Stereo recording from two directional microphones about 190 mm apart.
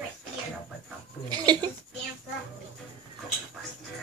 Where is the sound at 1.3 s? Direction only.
20° right (ahead or behind).